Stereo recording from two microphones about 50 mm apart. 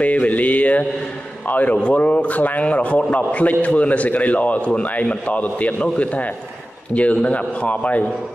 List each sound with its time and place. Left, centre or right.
0.0 s mantra: left
1.5 s speech: left